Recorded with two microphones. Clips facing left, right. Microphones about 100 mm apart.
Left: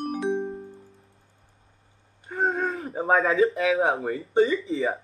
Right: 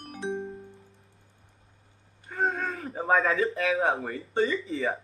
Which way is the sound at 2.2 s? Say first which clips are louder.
Left 3 dB; 30° left (ahead or behind).